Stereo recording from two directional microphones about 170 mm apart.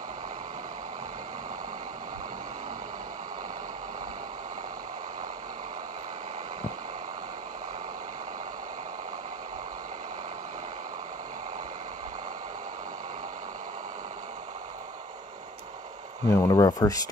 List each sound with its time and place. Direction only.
16.3 s speech: 20° left (ahead or behind)